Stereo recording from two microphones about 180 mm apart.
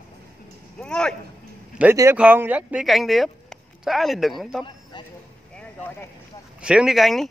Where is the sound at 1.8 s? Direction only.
15° right (ahead or behind).